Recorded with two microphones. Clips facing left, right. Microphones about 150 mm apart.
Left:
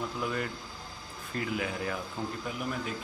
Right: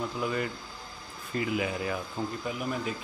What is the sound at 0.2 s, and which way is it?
A man's voice, 5° right (ahead or behind).